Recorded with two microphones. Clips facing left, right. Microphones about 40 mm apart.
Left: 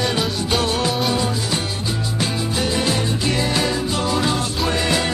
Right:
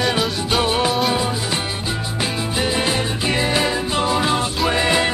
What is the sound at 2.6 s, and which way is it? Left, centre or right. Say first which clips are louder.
Music: right 1 dB; right.